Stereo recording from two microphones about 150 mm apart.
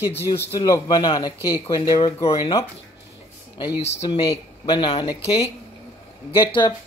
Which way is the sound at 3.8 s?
45° left (ahead or behind).